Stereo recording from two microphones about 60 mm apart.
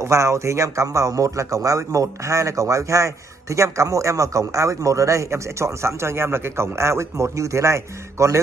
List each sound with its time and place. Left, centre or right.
0.0 s a man's voice: right